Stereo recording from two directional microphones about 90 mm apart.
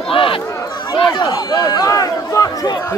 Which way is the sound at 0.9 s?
60° left (ahead or behind).